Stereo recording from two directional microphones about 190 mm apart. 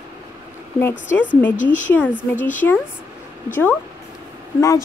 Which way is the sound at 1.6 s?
40° left (ahead or behind).